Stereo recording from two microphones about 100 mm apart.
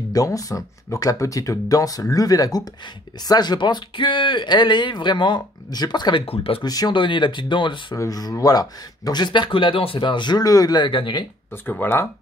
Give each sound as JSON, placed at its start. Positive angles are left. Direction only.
{"t": 0.1, "sound": "speech", "side_deg": 35}
{"t": 6.2, "sound": "speech", "side_deg": 70}
{"t": 6.6, "sound": "speech", "side_deg": 40}
{"t": 7.9, "sound": "speech", "side_deg": 40}
{"t": 11.5, "sound": "speech", "side_deg": 20}